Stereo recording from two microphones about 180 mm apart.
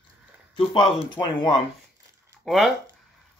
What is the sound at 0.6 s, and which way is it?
Speech, 30° left (ahead or behind).